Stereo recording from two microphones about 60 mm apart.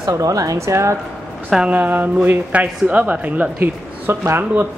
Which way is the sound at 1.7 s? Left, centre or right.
Right.